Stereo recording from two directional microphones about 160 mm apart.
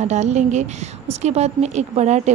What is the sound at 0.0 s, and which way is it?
A woman's voice, 45° right (ahead or behind).